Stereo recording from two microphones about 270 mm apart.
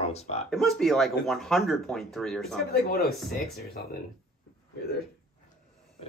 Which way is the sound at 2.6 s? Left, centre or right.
Left.